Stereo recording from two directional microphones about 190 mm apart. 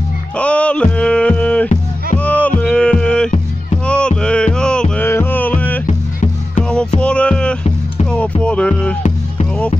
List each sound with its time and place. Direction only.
0.4 s a sound: 5° left (ahead or behind)
2.1 s music: 5° left (ahead or behind)
5.9 s music: 35° left (ahead or behind)
7.0 s music: 5° left (ahead or behind)